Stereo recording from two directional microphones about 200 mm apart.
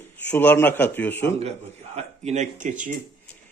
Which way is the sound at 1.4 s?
30° right (ahead or behind).